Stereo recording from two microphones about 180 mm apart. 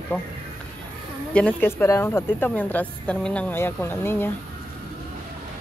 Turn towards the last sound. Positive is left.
turn(degrees=10)  # may be behind; listen again after turning